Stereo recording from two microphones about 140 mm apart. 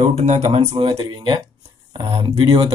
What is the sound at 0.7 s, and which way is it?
Speech, 35° right (ahead or behind).